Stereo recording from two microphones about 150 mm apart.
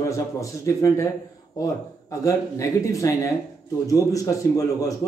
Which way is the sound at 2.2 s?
20° left (ahead or behind).